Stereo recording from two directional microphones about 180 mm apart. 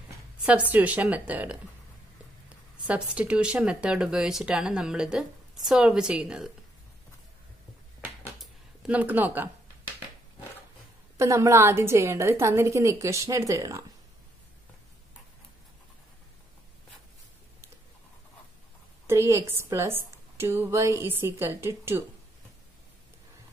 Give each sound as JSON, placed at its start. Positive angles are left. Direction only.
{"t": 0.5, "sound": "a woman's voice", "side_deg": -10}
{"t": 2.9, "sound": "speech", "side_deg": -5}
{"t": 8.4, "sound": "a sound", "side_deg": -5}
{"t": 11.1, "sound": "a woman's voice", "side_deg": -15}
{"t": 19.0, "sound": "a woman's voice", "side_deg": -15}